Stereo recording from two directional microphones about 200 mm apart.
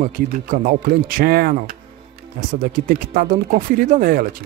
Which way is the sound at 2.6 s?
40° right (ahead or behind).